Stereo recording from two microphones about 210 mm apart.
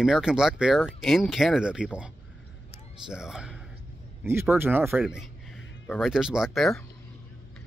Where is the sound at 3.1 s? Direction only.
5° right (ahead or behind).